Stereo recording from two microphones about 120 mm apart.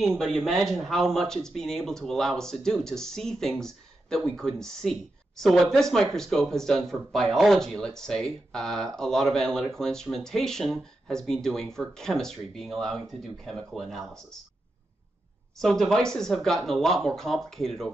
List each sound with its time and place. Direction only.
0.2 s speech: centre (ahead or behind)
15.6 s speech: 5° left (ahead or behind)